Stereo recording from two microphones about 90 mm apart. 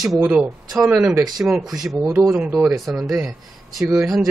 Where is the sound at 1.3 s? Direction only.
Centre (ahead or behind).